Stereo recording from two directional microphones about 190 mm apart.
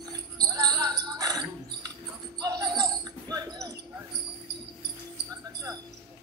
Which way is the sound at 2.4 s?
20° right (ahead or behind).